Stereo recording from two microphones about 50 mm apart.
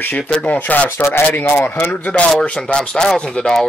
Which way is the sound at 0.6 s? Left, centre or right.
Left.